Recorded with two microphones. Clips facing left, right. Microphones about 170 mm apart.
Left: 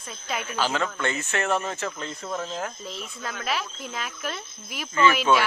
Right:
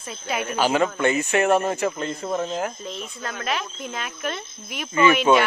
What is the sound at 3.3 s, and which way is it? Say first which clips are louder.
Speech: right 2 dB; centre (ahead or behind).